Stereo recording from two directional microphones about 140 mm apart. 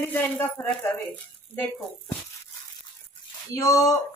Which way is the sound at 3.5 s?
25° left (ahead or behind).